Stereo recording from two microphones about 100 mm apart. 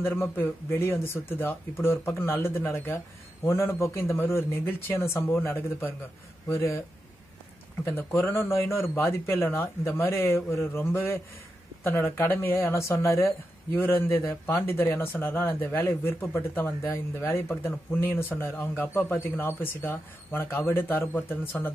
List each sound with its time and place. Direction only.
0.0 s speech: 20° left (ahead or behind)
7.8 s speech: 25° left (ahead or behind)